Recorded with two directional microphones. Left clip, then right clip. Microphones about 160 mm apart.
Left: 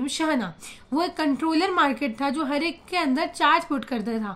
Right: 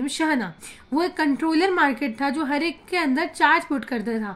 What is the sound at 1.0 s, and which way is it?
A woman's voice, 30° left (ahead or behind).